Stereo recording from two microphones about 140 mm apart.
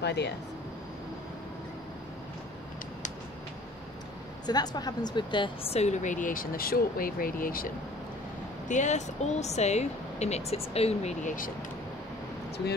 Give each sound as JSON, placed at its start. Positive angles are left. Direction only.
{"t": 4.5, "sound": "speech", "side_deg": 30}
{"t": 8.6, "sound": "speech", "side_deg": 60}